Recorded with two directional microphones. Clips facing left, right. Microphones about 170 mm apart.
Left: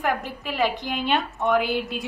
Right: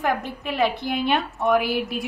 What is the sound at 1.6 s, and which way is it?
Speech, 20° left (ahead or behind).